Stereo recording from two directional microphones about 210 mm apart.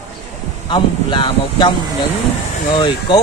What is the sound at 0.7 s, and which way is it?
Speech, 25° left (ahead or behind).